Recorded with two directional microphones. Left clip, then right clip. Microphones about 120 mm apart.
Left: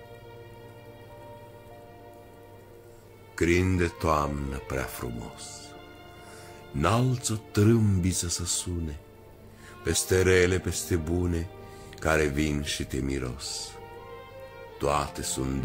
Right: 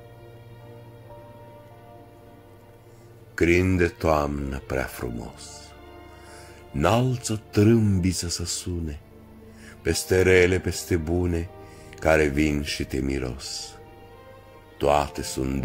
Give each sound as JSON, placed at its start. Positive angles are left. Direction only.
{"t": 3.3, "sound": "speech", "side_deg": -15}
{"t": 6.7, "sound": "speech", "side_deg": -15}
{"t": 9.8, "sound": "speech", "side_deg": -15}
{"t": 14.8, "sound": "speech", "side_deg": -15}